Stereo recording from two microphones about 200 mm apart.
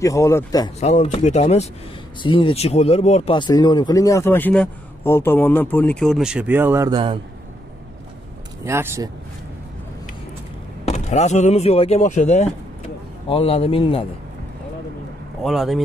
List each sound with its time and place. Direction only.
0.0 s speech: 15° left (ahead or behind)
0.7 s speech: 35° left (ahead or behind); by 7.2 s 25° right (ahead or behind)
8.6 s speech: 15° right (ahead or behind)
10.9 s a man's voice: 35° left (ahead or behind)
15.4 s speech: centre (ahead or behind)